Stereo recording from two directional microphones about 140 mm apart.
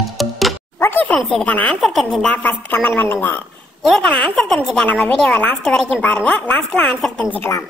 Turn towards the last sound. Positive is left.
turn(degrees=15)  # may be behind; listen again after turning